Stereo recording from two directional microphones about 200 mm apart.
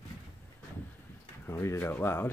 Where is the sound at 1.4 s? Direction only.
15° left (ahead or behind).